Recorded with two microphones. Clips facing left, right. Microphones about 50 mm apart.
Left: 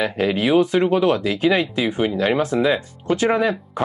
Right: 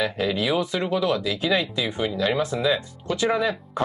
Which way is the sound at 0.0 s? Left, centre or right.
Left.